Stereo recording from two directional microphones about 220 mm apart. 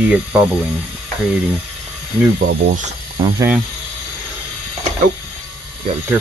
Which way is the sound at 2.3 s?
40° right (ahead or behind).